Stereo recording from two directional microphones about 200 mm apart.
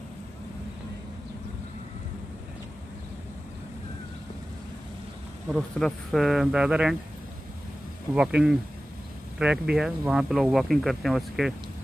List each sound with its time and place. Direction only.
5.5 s speech: centre (ahead or behind)
8.1 s speech: 5° right (ahead or behind)